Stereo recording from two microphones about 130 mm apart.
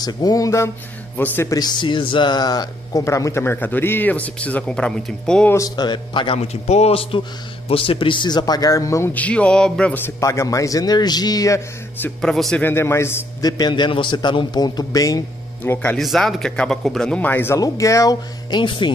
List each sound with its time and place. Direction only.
0.0 s speech: 30° left (ahead or behind)
1.1 s speech: 15° left (ahead or behind)
1.5 s speech: 35° left (ahead or behind); by 5.5 s 5° left (ahead or behind)
5.5 s a man's voice: 30° left (ahead or behind)
9.1 s speech: 10° left (ahead or behind)
12.2 s speech: 5° left (ahead or behind)
12.6 s speech: 20° left (ahead or behind)
15.6 s speech: 15° left (ahead or behind)
16.0 s speech: centre (ahead or behind); by 18.6 s 25° left (ahead or behind)